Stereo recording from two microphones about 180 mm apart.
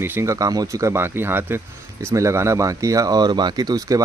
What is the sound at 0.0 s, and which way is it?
Speech, 15° right (ahead or behind).